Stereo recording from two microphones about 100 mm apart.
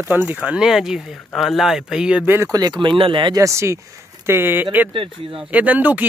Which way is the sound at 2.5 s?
45° right (ahead or behind).